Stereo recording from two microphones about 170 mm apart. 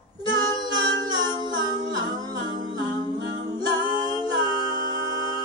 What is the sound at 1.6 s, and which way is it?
Music, 25° right (ahead or behind).